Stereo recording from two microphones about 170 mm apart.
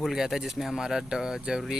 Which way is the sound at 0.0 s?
Centre (ahead or behind).